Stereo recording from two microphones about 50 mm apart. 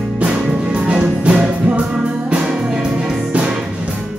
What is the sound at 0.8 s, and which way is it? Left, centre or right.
Music, right.